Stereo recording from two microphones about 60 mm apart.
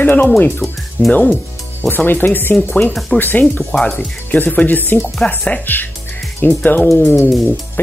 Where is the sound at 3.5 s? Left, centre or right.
Centre.